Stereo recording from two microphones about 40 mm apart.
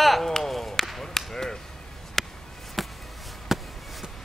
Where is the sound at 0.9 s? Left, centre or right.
Centre.